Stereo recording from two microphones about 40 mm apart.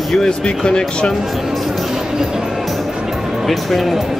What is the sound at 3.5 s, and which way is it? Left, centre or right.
Speech, centre.